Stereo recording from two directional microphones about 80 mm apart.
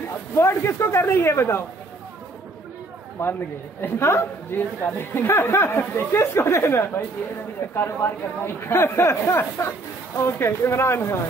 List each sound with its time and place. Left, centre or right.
0.4 s speech: left
3.2 s a man's voice: left